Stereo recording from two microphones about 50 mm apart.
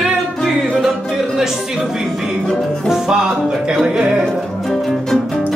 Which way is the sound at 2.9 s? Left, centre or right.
Centre.